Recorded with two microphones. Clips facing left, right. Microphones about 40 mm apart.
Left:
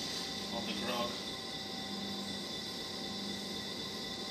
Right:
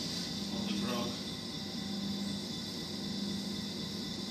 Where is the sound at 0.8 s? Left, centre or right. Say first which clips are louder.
Left 2 dB; centre.